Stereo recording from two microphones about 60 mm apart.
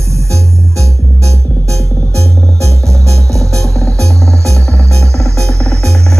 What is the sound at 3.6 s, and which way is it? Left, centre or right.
Music, centre.